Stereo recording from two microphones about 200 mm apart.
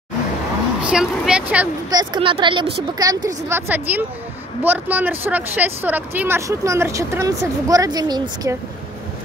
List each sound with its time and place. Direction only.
0.8 s speech: 5° right (ahead or behind)
1.9 s a woman's voice: 20° right (ahead or behind)